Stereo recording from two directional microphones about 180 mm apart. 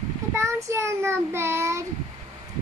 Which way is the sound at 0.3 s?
15° right (ahead or behind).